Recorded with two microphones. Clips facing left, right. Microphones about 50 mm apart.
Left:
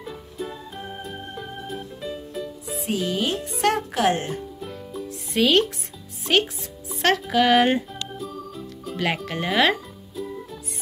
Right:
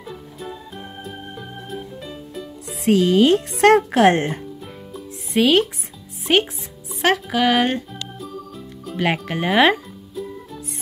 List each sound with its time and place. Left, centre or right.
0.0 s music: centre
2.8 s speech: right
5.4 s speech: centre
6.3 s speech: centre
7.9 s music: centre
8.9 s speech: centre